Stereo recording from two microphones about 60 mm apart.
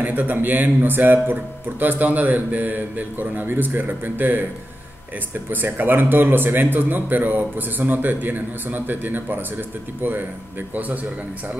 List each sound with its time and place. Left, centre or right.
0.0 s speech: right
5.5 s speech: right
10.7 s a man's voice: right